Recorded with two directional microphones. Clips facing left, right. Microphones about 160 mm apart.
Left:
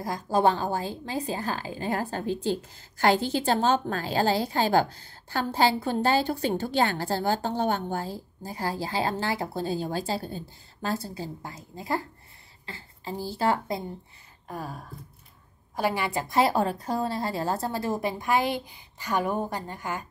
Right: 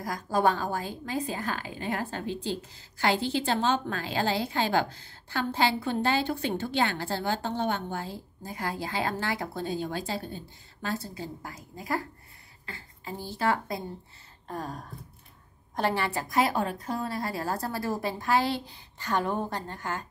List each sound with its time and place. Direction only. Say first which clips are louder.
0.0 s a woman's voice: left 2 dB; 30° left (ahead or behind)
14.5 s a woman's voice: even; 5° left (ahead or behind)
16.3 s a woman's voice: left 4 dB; 30° left (ahead or behind); by 20.1 s 10° left (ahead or behind)